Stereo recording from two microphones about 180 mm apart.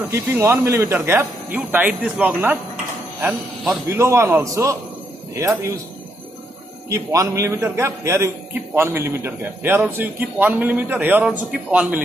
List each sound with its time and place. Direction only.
0.1 s a man's voice: 15° right (ahead or behind)
6.9 s a man's voice: 15° right (ahead or behind)